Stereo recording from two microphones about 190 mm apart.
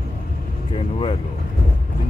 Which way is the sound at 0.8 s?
30° left (ahead or behind).